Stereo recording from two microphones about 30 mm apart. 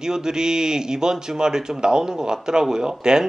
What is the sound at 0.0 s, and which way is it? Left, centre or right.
Speech, right.